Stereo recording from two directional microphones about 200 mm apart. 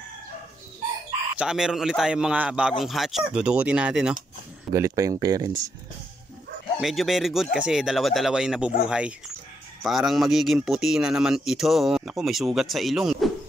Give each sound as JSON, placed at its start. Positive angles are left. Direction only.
{"t": 1.4, "sound": "speech", "side_deg": -5}
{"t": 4.7, "sound": "speech", "side_deg": -15}
{"t": 6.8, "sound": "speech", "side_deg": 0}